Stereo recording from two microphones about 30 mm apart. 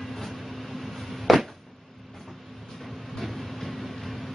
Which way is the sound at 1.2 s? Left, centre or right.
Centre.